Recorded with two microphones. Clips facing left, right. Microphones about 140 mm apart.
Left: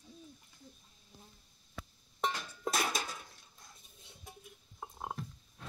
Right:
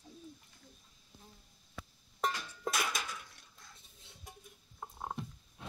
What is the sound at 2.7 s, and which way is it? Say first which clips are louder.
Dishes: left 2 dB; 35° left (ahead or behind).